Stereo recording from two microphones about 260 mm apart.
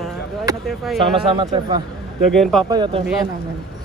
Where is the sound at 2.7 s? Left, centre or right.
Centre.